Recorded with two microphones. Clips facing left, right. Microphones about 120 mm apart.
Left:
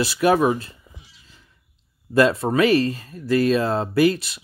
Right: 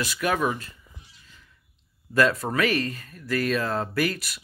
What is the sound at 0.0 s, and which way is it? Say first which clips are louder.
Speech: left 7 dB; 30° left (ahead or behind).